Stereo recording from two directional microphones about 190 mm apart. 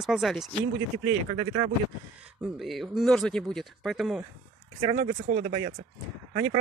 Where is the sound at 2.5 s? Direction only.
Centre (ahead or behind).